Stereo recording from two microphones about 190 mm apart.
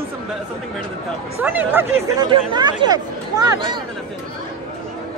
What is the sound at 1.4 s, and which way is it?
Speech, 10° right (ahead or behind).